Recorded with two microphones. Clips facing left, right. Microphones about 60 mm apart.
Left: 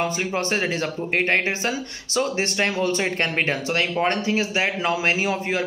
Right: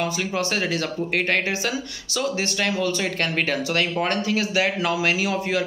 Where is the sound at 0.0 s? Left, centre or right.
Left.